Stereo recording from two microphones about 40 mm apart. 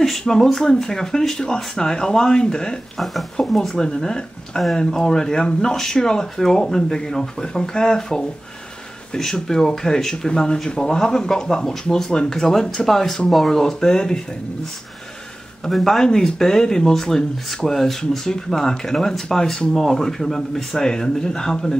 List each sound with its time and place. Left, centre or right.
0.3 s speech: centre
3.0 s speech: centre
15.7 s speech: centre
16.0 s speech: centre